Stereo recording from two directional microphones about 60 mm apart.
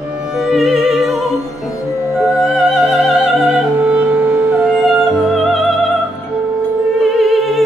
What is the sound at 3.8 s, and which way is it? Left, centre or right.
Music, right.